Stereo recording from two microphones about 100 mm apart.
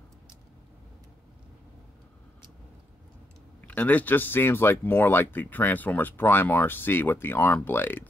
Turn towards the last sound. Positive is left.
turn(degrees=20)  # may be behind; listen again after turning